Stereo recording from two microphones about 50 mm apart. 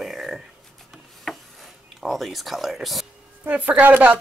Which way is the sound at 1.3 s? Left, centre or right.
Centre.